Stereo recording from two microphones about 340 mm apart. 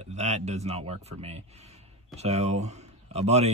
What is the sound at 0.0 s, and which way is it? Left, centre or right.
Speech, centre.